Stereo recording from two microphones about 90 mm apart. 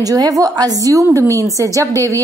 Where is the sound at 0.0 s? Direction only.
40° right (ahead or behind).